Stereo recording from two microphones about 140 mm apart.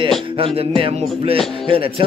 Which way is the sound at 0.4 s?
40° right (ahead or behind).